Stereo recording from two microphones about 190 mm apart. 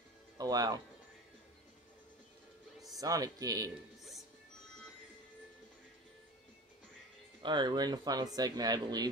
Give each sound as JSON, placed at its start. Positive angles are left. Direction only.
{"t": 0.4, "sound": "speech", "side_deg": -20}
{"t": 3.0, "sound": "speech", "side_deg": -20}
{"t": 7.4, "sound": "speech", "side_deg": -25}